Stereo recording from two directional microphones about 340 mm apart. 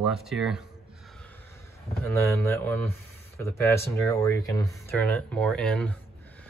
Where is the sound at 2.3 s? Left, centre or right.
Centre.